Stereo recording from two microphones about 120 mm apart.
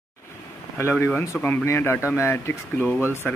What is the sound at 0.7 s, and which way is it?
Speech, 20° left (ahead or behind).